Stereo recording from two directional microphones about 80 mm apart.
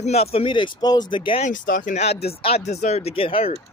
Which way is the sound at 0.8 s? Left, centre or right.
Left.